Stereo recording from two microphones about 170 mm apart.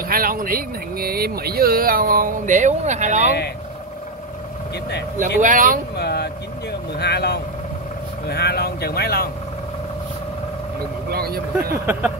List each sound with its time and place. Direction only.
0.1 s speech: 60° right (ahead or behind)
5.4 s speech: 50° right (ahead or behind)
5.9 s speech: 75° left (ahead or behind)
11.1 s speech: 65° right (ahead or behind)
11.8 s a sound: 10° right (ahead or behind)